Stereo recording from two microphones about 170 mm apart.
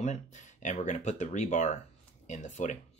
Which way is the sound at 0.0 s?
45° left (ahead or behind).